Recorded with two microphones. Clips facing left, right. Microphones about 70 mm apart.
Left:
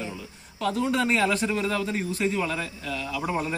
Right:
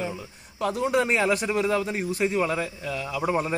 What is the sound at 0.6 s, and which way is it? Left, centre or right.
A man's voice, right.